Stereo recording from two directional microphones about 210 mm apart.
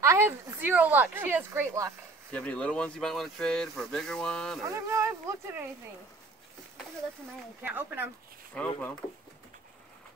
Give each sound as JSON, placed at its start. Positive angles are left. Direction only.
{"t": 0.0, "sound": "speech", "side_deg": -10}
{"t": 2.3, "sound": "speech", "side_deg": 5}
{"t": 4.6, "sound": "speech", "side_deg": -15}
{"t": 7.6, "sound": "speech", "side_deg": -10}
{"t": 8.5, "sound": "speech", "side_deg": 10}